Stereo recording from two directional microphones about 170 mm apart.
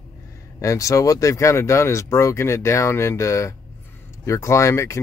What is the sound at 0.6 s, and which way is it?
Speech, 20° left (ahead or behind).